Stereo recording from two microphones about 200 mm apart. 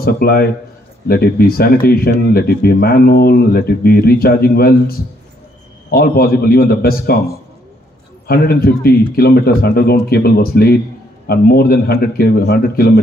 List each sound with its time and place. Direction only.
0.0 s speech: 50° left (ahead or behind)
8.3 s speech: 50° left (ahead or behind)